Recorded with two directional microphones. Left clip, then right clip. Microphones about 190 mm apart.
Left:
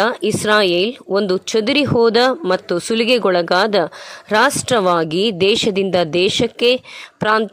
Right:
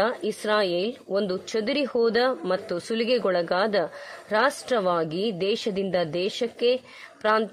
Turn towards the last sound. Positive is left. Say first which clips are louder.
# left 7 dB
turn(degrees=25)  # may be behind; listen again after turning